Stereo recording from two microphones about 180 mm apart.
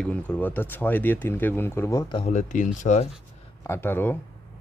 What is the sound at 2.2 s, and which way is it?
Speech, 40° left (ahead or behind).